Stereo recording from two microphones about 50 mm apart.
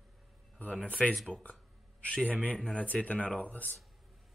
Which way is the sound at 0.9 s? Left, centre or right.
Left.